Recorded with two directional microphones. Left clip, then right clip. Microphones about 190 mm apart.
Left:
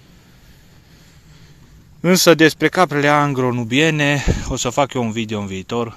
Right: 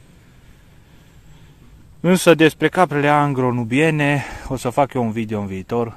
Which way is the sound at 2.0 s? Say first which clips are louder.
Left 1 dB; 5° right (ahead or behind).